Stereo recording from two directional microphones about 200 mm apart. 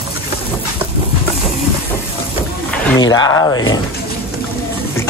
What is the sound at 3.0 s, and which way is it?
Speech, 20° left (ahead or behind).